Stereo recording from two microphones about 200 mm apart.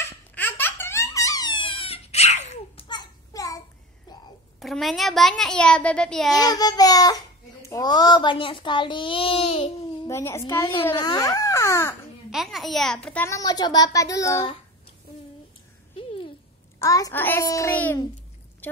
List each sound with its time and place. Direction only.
0.3 s baby laughter: 10° left (ahead or behind); by 2.9 s 35° left (ahead or behind)
2.9 s a sound: 20° left (ahead or behind)
4.6 s a child's voice: centre (ahead or behind)
6.3 s a child's voice: 20° left (ahead or behind)
10.0 s a child's voice: 15° left (ahead or behind)
12.3 s a child's voice: centre (ahead or behind); by 14.4 s 15° left (ahead or behind)
16.0 s a sound: 30° left (ahead or behind)
16.8 s a child's voice: 15° left (ahead or behind)
18.6 s a sound: 10° left (ahead or behind)